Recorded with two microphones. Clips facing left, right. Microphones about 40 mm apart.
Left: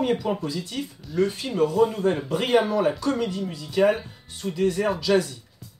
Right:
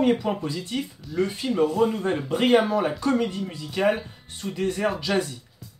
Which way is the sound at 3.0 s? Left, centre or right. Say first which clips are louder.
Right 1 dB; right.